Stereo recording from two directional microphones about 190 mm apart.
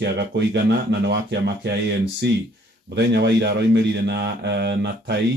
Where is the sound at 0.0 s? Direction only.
60° right (ahead or behind).